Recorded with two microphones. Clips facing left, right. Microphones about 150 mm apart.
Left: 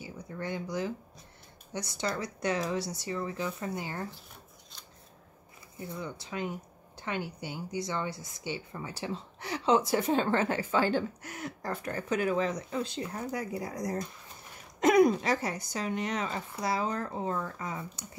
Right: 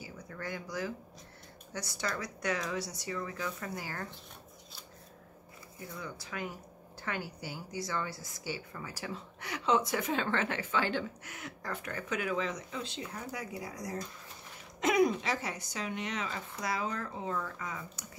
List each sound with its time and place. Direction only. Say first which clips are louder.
0.0 s speech: left 4 dB; 25° left (ahead or behind)
5.8 s a woman's voice: left 5 dB; 25° left (ahead or behind)